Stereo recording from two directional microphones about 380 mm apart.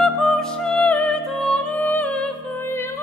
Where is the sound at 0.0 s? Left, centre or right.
Centre.